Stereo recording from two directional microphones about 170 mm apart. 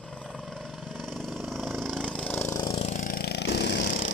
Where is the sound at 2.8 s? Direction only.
50° left (ahead or behind).